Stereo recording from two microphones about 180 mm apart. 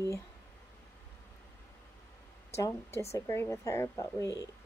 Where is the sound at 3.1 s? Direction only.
15° left (ahead or behind).